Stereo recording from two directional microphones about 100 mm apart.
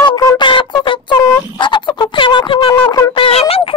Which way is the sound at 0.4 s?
55° left (ahead or behind).